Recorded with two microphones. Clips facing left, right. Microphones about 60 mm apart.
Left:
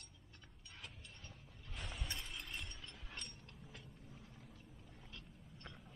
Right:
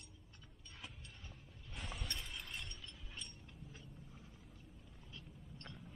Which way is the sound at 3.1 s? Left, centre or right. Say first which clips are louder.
Even; left.